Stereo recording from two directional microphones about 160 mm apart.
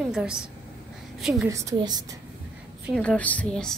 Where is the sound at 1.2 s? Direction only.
5° right (ahead or behind).